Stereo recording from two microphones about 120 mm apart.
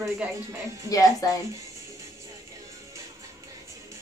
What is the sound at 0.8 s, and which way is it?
Speech, 30° left (ahead or behind).